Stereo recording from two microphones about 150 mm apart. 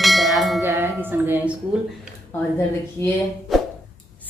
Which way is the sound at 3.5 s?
Centre (ahead or behind).